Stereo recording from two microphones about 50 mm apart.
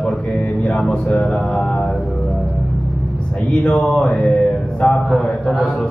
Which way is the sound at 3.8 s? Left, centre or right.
Left.